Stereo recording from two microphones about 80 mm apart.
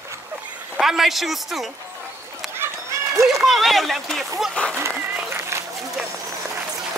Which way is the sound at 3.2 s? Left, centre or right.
Centre.